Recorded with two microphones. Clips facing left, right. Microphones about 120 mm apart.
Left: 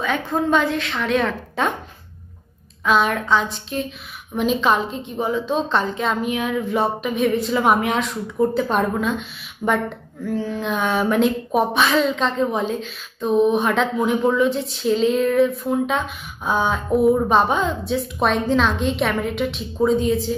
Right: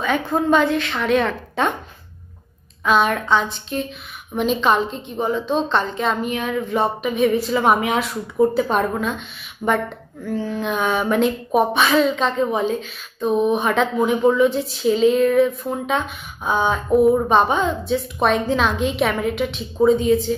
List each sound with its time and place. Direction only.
0.0 s speech: centre (ahead or behind)
2.8 s speech: centre (ahead or behind)